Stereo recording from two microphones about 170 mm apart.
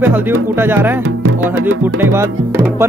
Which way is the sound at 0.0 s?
10° right (ahead or behind).